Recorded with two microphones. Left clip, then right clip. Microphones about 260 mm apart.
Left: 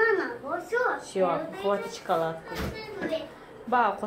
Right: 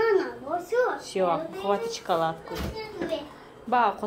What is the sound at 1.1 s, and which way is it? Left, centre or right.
A woman's voice, centre.